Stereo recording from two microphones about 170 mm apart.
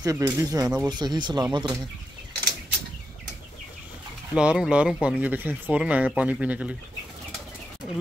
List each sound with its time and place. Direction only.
0.0 s speech: 20° right (ahead or behind)
4.4 s speech: 5° right (ahead or behind)